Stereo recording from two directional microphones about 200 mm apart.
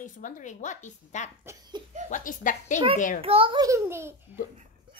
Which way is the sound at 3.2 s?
25° right (ahead or behind).